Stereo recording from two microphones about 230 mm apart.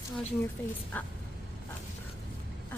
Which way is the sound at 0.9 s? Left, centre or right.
Centre.